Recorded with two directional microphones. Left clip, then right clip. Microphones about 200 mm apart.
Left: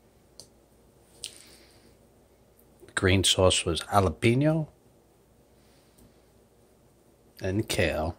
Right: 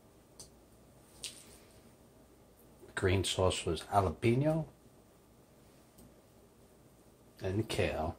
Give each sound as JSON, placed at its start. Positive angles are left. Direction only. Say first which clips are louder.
{"t": 2.9, "sound": "speech", "louder": "left 9 dB", "side_deg": 50}
{"t": 7.3, "sound": "speech", "louder": "left 7 dB", "side_deg": 55}